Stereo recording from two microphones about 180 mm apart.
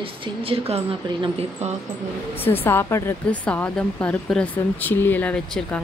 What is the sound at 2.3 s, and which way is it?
Speech, 10° left (ahead or behind).